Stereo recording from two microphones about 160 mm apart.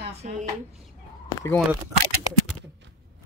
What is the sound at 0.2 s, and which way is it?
Speech, 50° right (ahead or behind).